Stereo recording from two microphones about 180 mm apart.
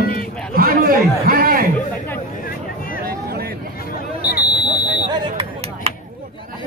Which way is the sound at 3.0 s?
55° right (ahead or behind).